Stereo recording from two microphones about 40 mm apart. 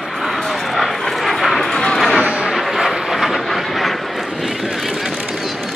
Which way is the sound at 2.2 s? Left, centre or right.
Right.